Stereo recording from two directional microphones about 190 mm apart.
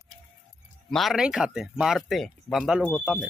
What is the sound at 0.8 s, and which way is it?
Speech, centre (ahead or behind).